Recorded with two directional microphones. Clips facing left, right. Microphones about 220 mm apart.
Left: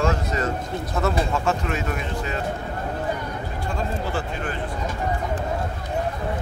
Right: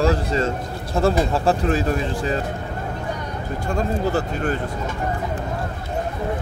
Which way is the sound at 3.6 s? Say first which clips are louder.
Right 6 dB; 40° right (ahead or behind).